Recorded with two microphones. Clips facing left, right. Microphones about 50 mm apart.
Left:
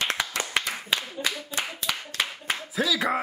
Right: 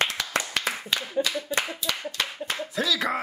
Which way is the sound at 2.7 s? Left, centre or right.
Centre.